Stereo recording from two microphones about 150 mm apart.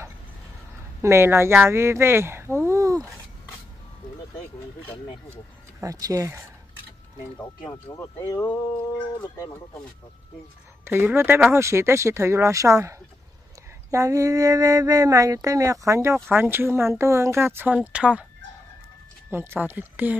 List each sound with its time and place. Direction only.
1.0 s speech: 15° right (ahead or behind)
5.3 s speech: 20° right (ahead or behind)
8.2 s speech: 25° left (ahead or behind)
10.9 s mantra: 15° right (ahead or behind)
16.3 s speech: 15° right (ahead or behind)
19.3 s speech: 15° right (ahead or behind)